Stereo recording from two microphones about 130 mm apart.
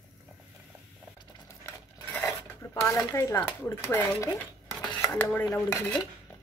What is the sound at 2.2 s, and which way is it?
Filing, 20° left (ahead or behind).